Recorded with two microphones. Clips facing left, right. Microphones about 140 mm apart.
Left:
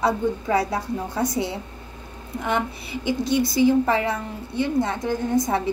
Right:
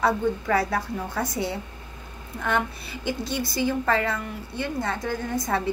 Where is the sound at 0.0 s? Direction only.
25° left (ahead or behind).